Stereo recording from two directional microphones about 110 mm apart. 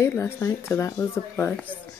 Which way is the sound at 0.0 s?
25° left (ahead or behind).